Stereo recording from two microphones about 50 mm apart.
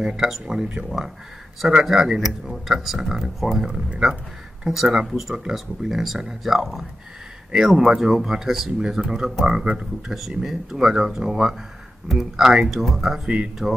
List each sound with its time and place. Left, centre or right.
0.0 s speech: centre
10.0 s speech: centre